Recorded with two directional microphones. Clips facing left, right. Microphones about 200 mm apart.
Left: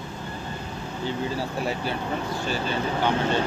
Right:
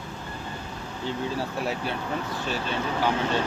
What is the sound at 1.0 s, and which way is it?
Speech, centre (ahead or behind).